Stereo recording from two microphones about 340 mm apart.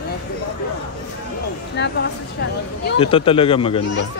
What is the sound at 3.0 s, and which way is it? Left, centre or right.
Speech, centre.